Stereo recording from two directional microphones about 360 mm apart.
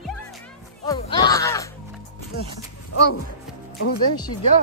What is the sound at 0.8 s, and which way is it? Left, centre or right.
Music, centre.